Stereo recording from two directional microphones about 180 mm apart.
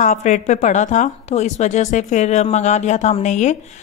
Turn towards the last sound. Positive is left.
turn(degrees=40)  # may be behind; listen again after turning